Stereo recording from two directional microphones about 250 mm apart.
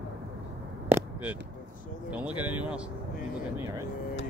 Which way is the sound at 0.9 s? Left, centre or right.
Centre.